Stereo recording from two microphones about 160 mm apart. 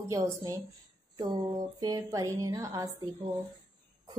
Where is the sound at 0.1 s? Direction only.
20° right (ahead or behind).